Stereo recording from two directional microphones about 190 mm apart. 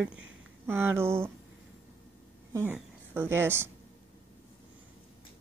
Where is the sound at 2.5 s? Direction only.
10° right (ahead or behind).